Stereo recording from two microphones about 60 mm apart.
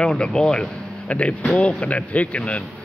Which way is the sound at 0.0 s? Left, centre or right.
Centre.